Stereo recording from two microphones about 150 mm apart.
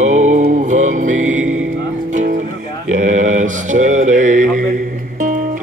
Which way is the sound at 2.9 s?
55° right (ahead or behind).